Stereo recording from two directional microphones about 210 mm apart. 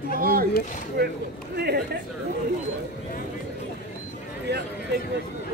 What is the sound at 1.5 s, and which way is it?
Speech, 50° right (ahead or behind).